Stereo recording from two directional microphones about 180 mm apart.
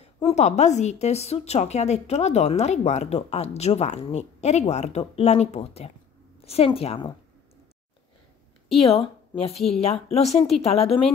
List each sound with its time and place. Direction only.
0.0 s a woman's voice: 35° left (ahead or behind)
8.7 s a woman's voice: 35° left (ahead or behind)